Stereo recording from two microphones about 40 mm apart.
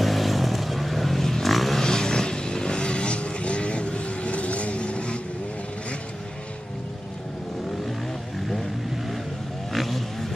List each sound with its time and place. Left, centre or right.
0.0 s vehicle: centre
1.8 s vehicle: centre
9.7 s vehicle: centre